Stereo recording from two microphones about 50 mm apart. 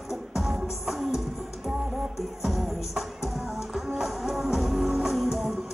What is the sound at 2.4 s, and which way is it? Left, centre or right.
Music, centre.